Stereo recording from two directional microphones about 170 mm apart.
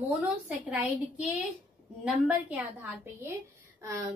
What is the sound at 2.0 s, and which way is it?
A woman's voice, 10° right (ahead or behind).